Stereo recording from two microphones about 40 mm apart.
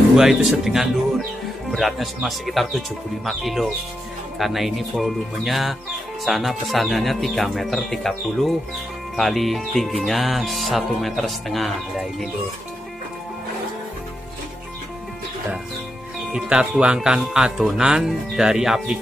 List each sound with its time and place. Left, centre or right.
0.1 s speech: centre
9.2 s speech: centre
16.3 s speech: right